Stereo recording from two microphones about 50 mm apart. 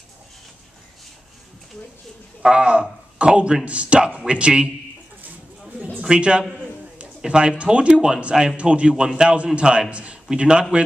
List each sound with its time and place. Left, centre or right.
2.4 s speech: right
5.9 s speech: right